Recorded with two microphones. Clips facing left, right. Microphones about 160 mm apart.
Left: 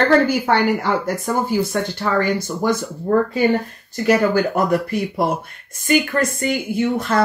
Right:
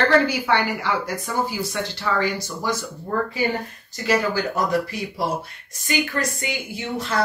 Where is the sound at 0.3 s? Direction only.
45° left (ahead or behind).